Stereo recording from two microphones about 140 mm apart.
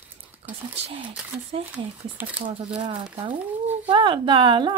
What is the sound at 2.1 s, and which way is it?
Speech, 10° right (ahead or behind).